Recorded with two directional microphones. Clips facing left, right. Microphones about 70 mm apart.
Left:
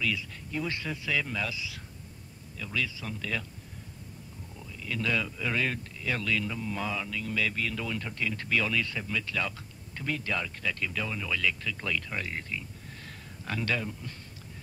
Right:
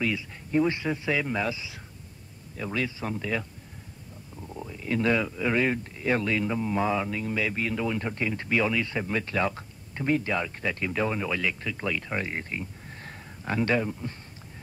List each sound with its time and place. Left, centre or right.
0.0 s a man's voice: right
4.6 s speech: right
9.0 s speech: right